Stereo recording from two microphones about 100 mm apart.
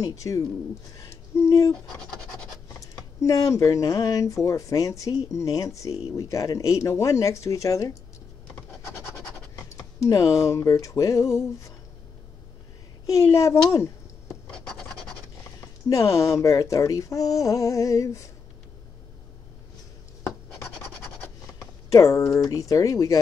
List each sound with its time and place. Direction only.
0.0 s speech: 30° left (ahead or behind)
2.8 s speech: 35° left (ahead or behind)
8.9 s scratch: 30° left (ahead or behind)
10.0 s speech: 35° left (ahead or behind)
13.0 s a woman's voice: 35° left (ahead or behind)
14.5 s scratch: 5° left (ahead or behind)
15.9 s speech: 35° left (ahead or behind)
21.5 s a sound: 35° left (ahead or behind)
22.4 s speech: 35° left (ahead or behind)